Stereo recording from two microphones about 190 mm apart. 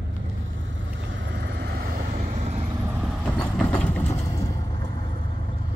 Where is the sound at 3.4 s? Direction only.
5° left (ahead or behind).